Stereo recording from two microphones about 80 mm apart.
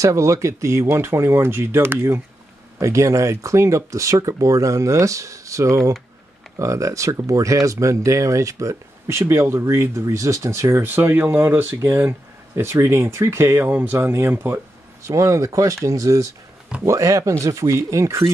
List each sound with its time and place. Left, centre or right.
0.0 s speech: right
15.0 s speech: right